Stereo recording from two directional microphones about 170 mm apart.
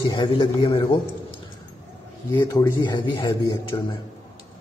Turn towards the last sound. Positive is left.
turn(degrees=25)  # may be behind; listen again after turning